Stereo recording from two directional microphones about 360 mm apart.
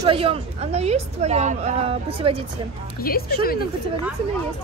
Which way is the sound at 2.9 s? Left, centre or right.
Left.